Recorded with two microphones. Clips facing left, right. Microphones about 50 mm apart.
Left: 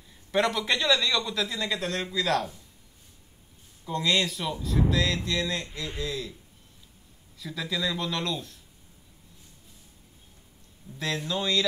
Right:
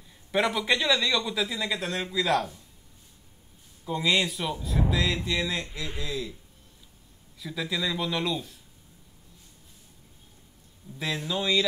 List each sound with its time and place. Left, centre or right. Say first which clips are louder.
0.3 s speech: even; centre
3.8 s speech: right 1 dB; centre
7.3 s speech: right 1 dB; centre
11.0 s speech: even; centre